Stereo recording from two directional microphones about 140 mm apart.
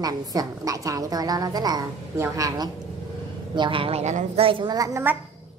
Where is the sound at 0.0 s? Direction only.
25° right (ahead or behind); by 4.5 s 55° right (ahead or behind).